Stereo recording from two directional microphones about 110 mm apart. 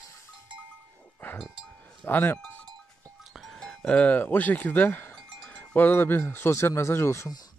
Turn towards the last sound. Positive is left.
turn(degrees=25)  # may be behind; listen again after turning